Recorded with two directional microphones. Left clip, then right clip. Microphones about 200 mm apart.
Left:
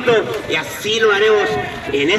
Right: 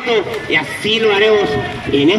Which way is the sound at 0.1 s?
25° right (ahead or behind).